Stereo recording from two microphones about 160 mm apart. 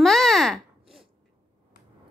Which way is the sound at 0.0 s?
5° left (ahead or behind).